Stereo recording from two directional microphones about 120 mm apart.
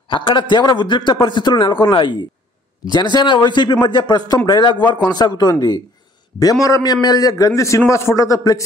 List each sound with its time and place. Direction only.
0.1 s a man's voice: 45° left (ahead or behind); by 8.6 s 30° left (ahead or behind)